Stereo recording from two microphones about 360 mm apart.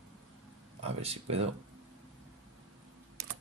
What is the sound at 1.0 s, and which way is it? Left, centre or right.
Speech, centre.